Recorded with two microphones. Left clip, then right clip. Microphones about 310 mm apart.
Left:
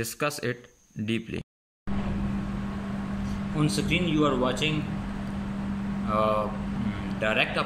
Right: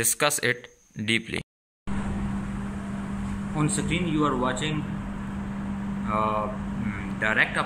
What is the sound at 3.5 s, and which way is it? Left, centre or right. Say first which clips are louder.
Speech: left 1 dB; centre.